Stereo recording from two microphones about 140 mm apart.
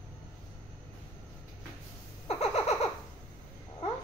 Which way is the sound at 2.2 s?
45° left (ahead or behind).